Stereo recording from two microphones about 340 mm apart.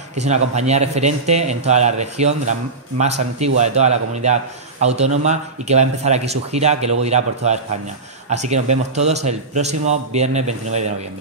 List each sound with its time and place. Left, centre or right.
0.1 s speech: centre